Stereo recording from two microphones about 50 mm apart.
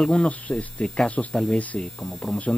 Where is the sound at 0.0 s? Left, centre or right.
Left.